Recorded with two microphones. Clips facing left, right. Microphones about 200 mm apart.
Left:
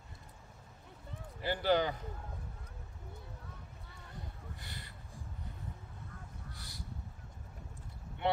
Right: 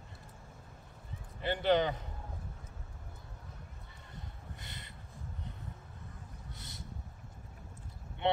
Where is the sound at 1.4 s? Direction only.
20° right (ahead or behind).